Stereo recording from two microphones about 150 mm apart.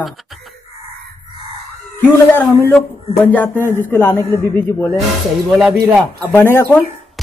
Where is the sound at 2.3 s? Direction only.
15° left (ahead or behind).